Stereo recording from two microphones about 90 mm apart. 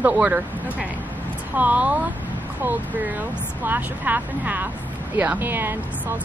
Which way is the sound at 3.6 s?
20° right (ahead or behind).